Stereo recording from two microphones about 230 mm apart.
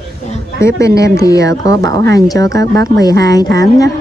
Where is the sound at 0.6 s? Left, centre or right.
Centre.